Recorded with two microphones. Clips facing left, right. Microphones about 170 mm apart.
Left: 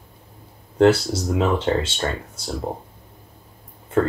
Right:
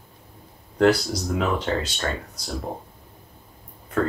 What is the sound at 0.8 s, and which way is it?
Speech, 25° left (ahead or behind).